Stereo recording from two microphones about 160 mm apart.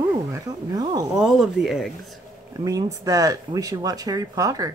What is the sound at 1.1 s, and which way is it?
Speech, 5° right (ahead or behind).